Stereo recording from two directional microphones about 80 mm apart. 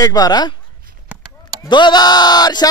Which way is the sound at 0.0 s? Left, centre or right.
Left.